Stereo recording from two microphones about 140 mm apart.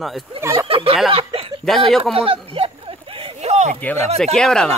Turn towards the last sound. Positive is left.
turn(degrees=5)  # may be behind; listen again after turning